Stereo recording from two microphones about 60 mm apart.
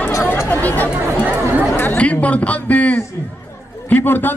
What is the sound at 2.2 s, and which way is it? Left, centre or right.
A man's voice, left.